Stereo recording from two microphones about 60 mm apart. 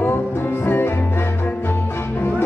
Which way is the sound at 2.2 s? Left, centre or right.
Left.